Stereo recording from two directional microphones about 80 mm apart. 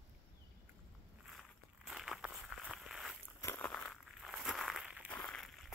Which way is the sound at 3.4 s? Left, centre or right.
Left.